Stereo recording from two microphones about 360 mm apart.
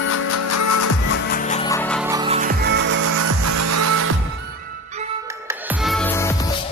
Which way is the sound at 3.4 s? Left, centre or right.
Right.